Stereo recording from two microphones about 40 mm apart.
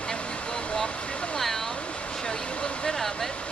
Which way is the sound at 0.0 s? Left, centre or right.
Left.